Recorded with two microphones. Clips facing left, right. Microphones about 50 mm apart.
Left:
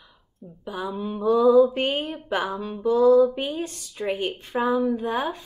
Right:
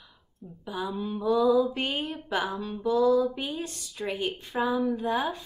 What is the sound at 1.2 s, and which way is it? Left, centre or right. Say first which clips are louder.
Mantra: left 6 dB; left.